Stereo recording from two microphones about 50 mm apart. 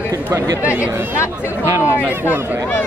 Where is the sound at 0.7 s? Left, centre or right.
Left.